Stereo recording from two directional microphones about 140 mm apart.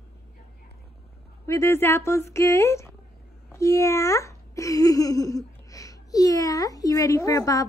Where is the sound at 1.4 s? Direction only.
20° left (ahead or behind).